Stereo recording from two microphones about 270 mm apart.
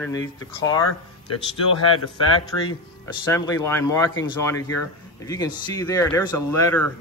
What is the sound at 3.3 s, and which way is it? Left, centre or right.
Speech, centre.